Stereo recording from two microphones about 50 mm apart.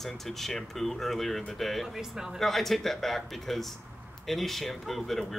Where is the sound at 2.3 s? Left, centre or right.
Centre.